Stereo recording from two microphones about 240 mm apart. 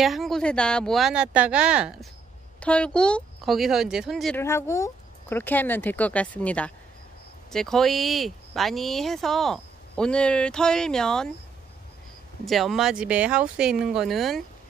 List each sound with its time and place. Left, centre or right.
0.0 s speech: centre
4.4 s speech: centre
12.4 s speech: centre